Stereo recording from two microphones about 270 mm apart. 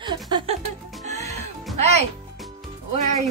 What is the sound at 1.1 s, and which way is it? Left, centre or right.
Music, right.